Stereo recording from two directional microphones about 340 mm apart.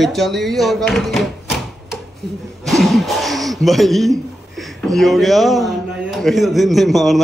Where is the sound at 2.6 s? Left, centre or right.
Centre.